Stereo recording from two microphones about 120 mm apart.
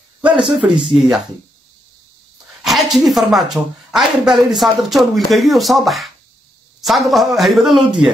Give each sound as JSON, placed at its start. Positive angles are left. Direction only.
{"t": 0.2, "sound": "speech", "side_deg": -5}
{"t": 2.6, "sound": "speech", "side_deg": 0}